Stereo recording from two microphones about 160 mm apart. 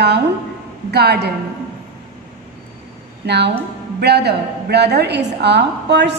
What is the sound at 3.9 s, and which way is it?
A woman's voice, 90° right.